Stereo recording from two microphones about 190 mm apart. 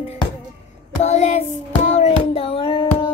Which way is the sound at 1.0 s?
35° left (ahead or behind).